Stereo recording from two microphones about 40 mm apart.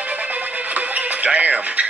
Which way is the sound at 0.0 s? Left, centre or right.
Right.